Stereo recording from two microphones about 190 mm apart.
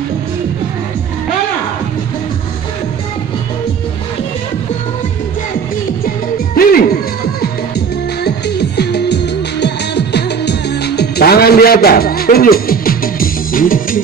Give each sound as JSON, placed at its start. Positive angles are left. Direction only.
{"t": 6.0, "sound": "music", "side_deg": 50}